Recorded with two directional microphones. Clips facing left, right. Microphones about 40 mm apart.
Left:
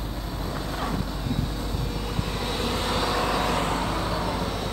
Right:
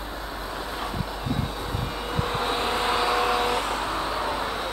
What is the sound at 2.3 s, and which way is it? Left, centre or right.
Vehicle, right.